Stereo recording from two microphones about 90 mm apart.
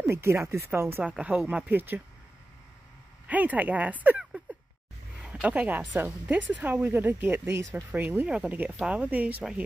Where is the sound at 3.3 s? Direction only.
15° right (ahead or behind).